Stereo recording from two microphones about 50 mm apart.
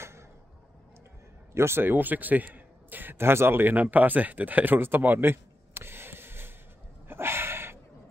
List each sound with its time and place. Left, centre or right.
1.5 s a man's voice: right
3.2 s speech: right
7.1 s a sound: right